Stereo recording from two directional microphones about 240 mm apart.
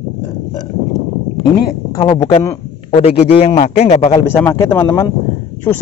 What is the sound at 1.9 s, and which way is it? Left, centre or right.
Speech, centre.